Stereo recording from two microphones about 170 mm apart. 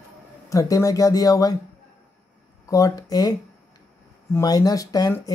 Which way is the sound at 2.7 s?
20° left (ahead or behind).